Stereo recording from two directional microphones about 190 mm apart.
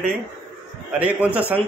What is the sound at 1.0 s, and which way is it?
Speech, 5° right (ahead or behind).